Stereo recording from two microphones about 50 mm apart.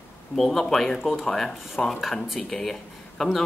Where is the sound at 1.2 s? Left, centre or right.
Centre.